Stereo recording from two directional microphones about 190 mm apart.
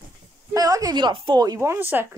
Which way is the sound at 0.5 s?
20° right (ahead or behind).